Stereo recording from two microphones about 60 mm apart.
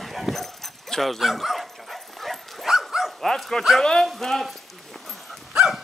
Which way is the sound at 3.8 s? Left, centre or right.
Centre.